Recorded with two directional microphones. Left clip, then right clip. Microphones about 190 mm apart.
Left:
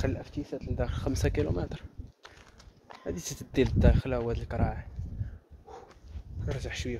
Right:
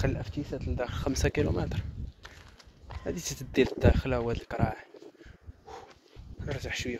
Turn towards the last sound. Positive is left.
turn(degrees=-10)  # may be behind; listen again after turning